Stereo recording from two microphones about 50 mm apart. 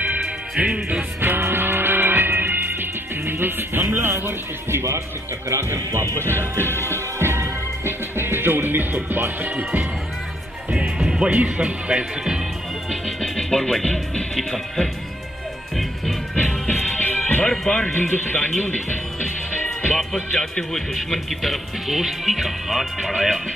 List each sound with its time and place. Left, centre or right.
0.0 s music: right
1.2 s music: right
5.5 s speech: right
6.1 s music: right
11.0 s music: centre
11.2 s speech: right
13.0 s music: centre
14.3 s speech: centre
16.6 s music: left
17.5 s speech: left
17.9 s speech: left
19.6 s music: left
20.3 s speech: centre
20.9 s speech: centre